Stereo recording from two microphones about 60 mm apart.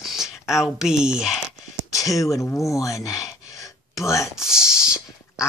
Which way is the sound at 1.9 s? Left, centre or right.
Left.